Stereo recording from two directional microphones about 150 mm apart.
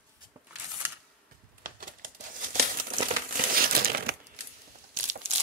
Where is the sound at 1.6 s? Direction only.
65° right (ahead or behind); by 4.2 s 85° right.